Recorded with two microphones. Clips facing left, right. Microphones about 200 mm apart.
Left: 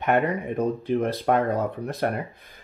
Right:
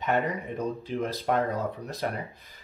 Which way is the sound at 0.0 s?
60° left (ahead or behind).